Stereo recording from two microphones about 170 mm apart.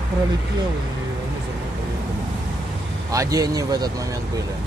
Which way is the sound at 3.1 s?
20° right (ahead or behind).